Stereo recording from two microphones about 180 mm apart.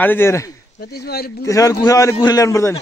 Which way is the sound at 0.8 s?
60° left (ahead or behind).